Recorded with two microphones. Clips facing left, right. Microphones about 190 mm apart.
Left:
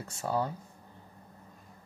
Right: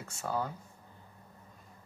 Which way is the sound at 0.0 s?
35° left (ahead or behind).